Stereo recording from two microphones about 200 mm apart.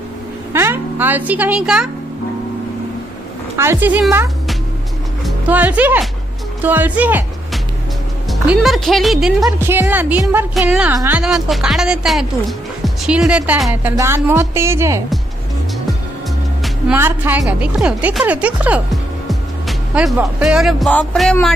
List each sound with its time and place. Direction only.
0.5 s music: 10° right (ahead or behind)
3.5 s a woman's voice: 10° right (ahead or behind)
9.6 s a woman's voice: 10° right (ahead or behind)
10.9 s a woman's voice: 15° right (ahead or behind)
11.1 s speech: centre (ahead or behind)
16.6 s speech: 5° right (ahead or behind)